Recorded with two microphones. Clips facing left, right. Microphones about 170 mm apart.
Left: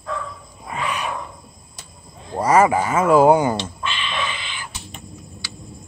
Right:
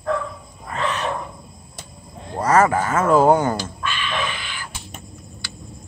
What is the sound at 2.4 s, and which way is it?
Speech, 10° left (ahead or behind).